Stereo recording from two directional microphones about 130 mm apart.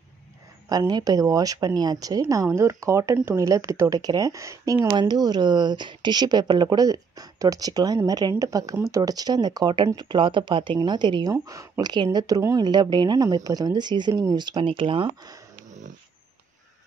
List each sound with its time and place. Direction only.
0.7 s a woman's voice: 30° right (ahead or behind)
11.4 s speech: 25° right (ahead or behind); by 15.3 s 40° right (ahead or behind)